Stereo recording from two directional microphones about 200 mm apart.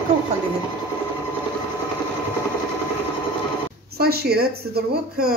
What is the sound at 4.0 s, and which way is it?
Speech, 50° right (ahead or behind).